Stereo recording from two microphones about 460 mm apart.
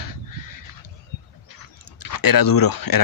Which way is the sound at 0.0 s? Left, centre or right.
Left.